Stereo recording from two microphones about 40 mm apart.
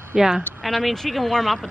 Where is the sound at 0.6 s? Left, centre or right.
Centre.